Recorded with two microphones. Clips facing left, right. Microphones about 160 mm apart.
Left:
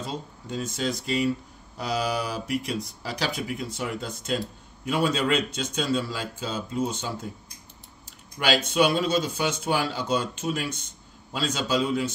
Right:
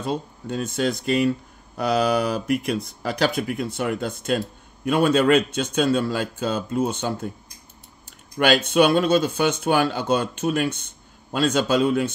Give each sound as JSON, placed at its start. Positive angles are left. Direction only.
{"t": 0.0, "sound": "speech", "side_deg": -60}
{"t": 8.4, "sound": "speech", "side_deg": -55}